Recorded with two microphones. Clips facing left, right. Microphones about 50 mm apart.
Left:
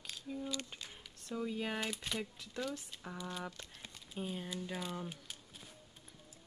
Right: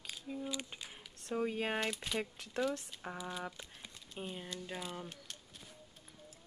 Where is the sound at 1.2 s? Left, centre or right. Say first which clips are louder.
Right 3 dB; right.